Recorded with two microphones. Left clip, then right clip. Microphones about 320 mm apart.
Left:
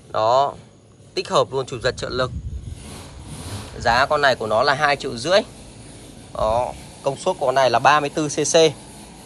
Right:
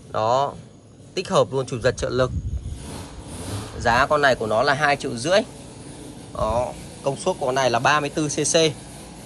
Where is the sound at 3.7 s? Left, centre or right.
Centre.